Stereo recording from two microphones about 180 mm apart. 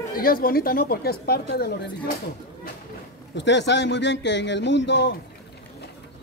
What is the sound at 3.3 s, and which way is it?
A man's voice, 80° left.